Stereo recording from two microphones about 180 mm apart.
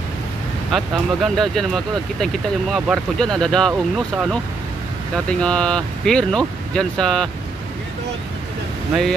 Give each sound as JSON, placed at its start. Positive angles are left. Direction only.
{"t": 0.7, "sound": "speech", "side_deg": 0}